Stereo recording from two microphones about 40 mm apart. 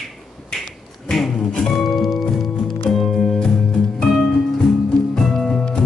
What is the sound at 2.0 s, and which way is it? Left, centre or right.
Music, centre.